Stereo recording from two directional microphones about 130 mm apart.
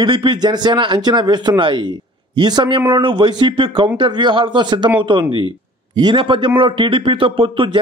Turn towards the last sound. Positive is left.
turn(degrees=-40)  # may be behind; listen again after turning